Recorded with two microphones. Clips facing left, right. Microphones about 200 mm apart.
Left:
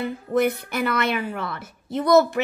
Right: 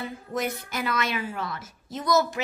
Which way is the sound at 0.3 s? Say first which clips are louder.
Left 9 dB; 60° left (ahead or behind).